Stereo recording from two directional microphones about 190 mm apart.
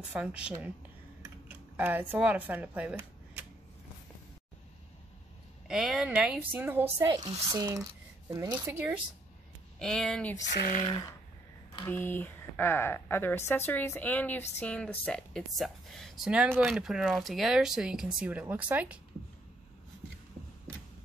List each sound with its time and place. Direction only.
0.1 s speech: 5° right (ahead or behind)
1.8 s speech: 10° right (ahead or behind)
5.7 s speech: centre (ahead or behind)
7.1 s speech: 20° right (ahead or behind)
9.8 s speech: 5° left (ahead or behind)
10.8 s speech: 25° left (ahead or behind)
11.8 s speech: 10° left (ahead or behind); by 18.9 s 5° right (ahead or behind)